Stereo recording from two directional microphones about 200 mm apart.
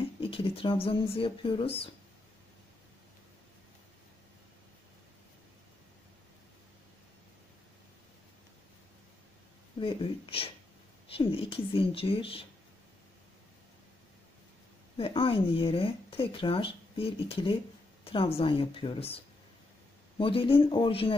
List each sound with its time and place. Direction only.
0.2 s speech: 25° left (ahead or behind)
9.8 s speech: 25° left (ahead or behind)
15.0 s speech: 25° left (ahead or behind)